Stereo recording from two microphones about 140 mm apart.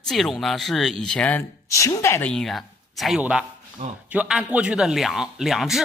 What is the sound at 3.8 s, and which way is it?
Speech, 50° right (ahead or behind).